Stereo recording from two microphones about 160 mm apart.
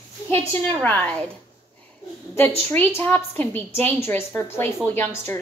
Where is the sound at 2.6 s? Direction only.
15° left (ahead or behind).